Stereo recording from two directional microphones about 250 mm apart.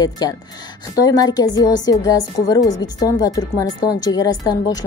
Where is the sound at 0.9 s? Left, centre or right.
Centre.